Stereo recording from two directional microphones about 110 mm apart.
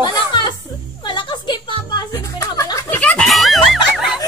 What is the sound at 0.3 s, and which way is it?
Music, 45° left (ahead or behind).